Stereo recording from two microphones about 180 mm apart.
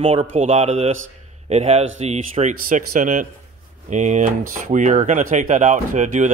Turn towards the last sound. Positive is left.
turn(degrees=-45)  # may be behind; listen again after turning